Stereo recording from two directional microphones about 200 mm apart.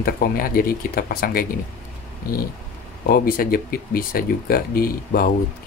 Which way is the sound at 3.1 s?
50° left (ahead or behind).